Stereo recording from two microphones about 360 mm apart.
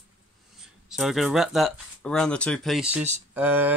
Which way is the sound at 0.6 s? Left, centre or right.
Centre.